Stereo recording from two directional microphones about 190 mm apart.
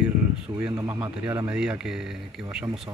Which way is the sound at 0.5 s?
20° right (ahead or behind).